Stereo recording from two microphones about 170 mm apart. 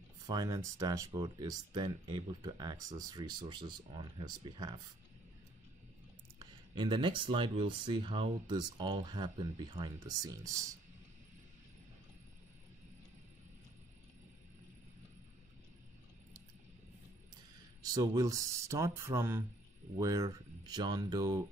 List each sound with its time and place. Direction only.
0.3 s speech: 25° right (ahead or behind)
6.4 s speech: 30° right (ahead or behind)
17.8 s speech: 20° right (ahead or behind)